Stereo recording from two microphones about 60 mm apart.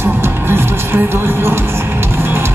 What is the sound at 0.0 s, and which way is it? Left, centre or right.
Music, right.